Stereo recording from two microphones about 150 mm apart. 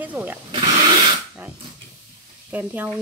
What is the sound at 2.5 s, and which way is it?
Speech, 10° right (ahead or behind).